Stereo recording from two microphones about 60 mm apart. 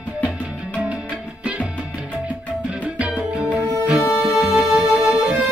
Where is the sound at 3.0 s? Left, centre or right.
Centre.